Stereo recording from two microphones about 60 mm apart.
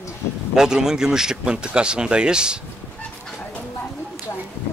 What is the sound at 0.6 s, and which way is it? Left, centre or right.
Speech, centre.